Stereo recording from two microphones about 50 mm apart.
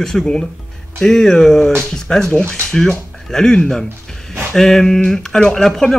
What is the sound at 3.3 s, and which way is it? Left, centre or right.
A man's voice, centre.